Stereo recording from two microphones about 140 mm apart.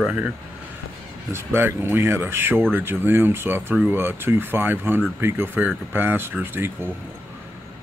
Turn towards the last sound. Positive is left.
turn(degrees=-15)  # may be behind; listen again after turning